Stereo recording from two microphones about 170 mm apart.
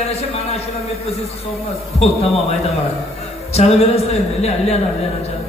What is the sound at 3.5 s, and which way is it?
A man's voice, 40° left (ahead or behind).